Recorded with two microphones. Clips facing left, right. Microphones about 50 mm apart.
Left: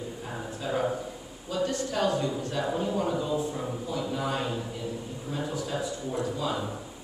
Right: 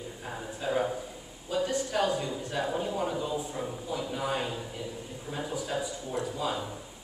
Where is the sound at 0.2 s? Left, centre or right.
Centre.